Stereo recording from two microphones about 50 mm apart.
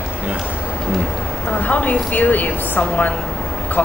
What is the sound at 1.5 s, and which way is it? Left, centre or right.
A woman's voice, left.